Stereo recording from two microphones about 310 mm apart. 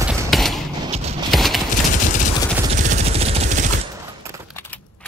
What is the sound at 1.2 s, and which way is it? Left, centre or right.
Clip-clop, centre.